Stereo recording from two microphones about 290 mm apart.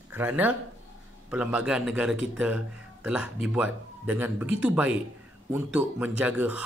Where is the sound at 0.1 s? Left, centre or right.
Centre.